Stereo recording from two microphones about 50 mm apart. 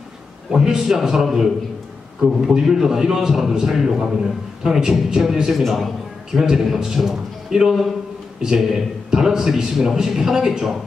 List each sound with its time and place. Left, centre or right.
0.5 s a man's voice: centre
2.5 s a man's voice: centre